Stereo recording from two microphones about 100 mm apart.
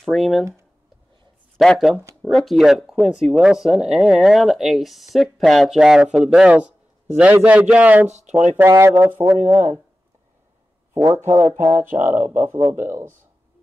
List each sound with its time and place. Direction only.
0.0 s speech: centre (ahead or behind)
1.6 s speech: centre (ahead or behind); by 9.8 s 25° right (ahead or behind)
11.2 s speech: 35° right (ahead or behind)
11.7 s speech: 20° right (ahead or behind)